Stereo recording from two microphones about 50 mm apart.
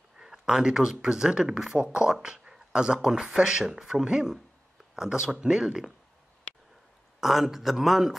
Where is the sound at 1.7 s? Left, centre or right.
Right.